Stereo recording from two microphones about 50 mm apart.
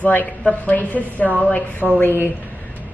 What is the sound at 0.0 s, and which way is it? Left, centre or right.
A woman's voice, left.